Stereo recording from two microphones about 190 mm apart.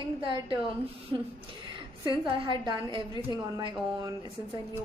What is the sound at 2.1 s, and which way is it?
A woman's voice, 25° right (ahead or behind).